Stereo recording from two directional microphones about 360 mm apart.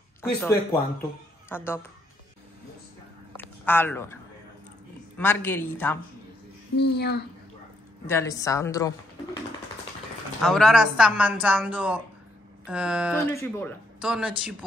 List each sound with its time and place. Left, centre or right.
0.2 s speech: centre
3.3 s a sound: centre
5.1 s speech: centre
6.8 s a woman's voice: left
8.1 s speech: centre
10.4 s speech: centre